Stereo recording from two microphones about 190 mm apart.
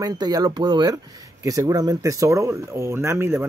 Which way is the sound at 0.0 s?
20° right (ahead or behind).